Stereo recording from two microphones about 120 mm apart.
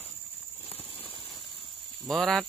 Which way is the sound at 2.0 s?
Centre (ahead or behind).